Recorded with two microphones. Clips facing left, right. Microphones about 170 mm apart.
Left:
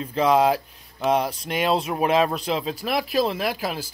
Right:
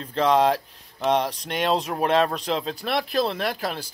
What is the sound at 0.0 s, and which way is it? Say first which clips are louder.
Speech: left 1 dB; 5° left (ahead or behind).